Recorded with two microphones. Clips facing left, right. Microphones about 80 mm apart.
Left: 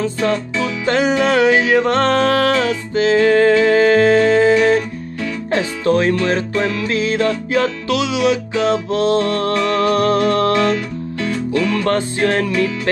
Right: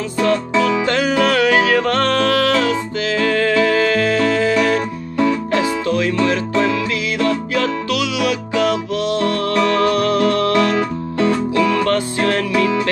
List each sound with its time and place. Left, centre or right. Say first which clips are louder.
0.8 s music: left 1 dB; left
11.1 s music: right 4 dB; right
11.8 s music: even; left
12.5 s music: right 3 dB; right